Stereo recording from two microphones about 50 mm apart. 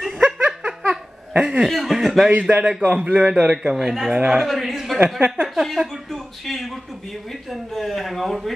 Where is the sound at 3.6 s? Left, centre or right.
Centre.